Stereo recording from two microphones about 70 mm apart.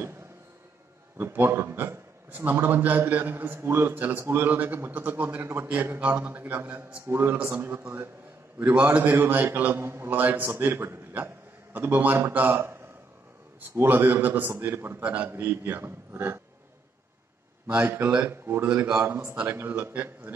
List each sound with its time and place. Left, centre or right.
1.1 s a man's voice: right
17.8 s a man's voice: right
19.4 s a man's voice: right